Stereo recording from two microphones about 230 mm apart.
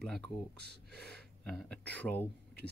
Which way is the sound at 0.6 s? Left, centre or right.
Right.